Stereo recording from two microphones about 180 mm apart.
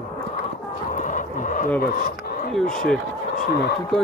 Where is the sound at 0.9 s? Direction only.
45° left (ahead or behind).